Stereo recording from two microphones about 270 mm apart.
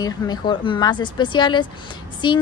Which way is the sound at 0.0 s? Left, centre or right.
Centre.